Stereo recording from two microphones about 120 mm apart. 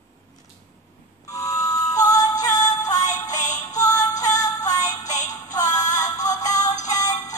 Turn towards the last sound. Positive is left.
turn(degrees=30)  # may be behind; listen again after turning